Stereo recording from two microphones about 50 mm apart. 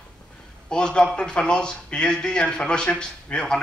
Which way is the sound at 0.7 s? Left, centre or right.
Centre.